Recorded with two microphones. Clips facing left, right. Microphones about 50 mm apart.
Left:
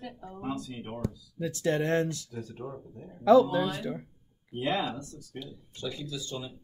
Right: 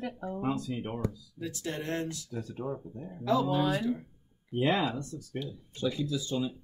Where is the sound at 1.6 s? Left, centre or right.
Left.